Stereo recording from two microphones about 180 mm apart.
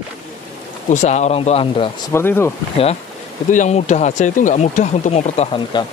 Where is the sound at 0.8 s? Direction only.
40° left (ahead or behind).